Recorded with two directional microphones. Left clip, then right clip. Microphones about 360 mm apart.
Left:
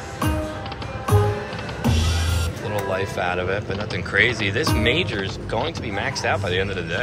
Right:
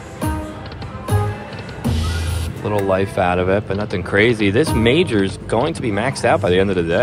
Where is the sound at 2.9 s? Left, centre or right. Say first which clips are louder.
Right 7 dB; centre.